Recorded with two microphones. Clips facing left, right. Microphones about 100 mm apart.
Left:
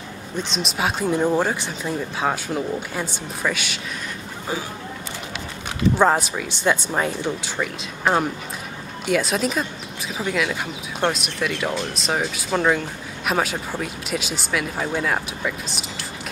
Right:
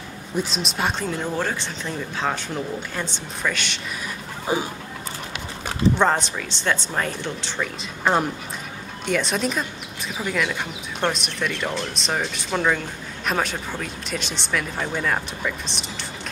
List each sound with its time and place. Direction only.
0.4 s speech: centre (ahead or behind)
1.0 s speech: 15° left (ahead or behind)
4.5 s speech: 20° right (ahead or behind)
5.9 s speech: 5° left (ahead or behind)